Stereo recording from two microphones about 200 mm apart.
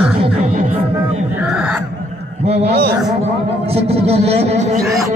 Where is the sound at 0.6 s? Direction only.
40° right (ahead or behind).